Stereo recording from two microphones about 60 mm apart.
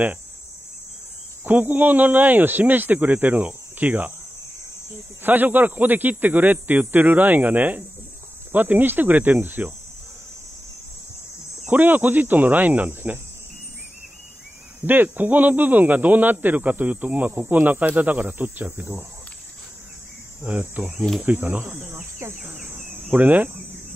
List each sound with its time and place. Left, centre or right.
1.4 s a man's voice: right
5.2 s speech: right
11.6 s a man's voice: right
14.9 s a man's voice: right
20.4 s a man's voice: right
22.3 s speech: right
22.7 s insect: right
23.0 s cricket: right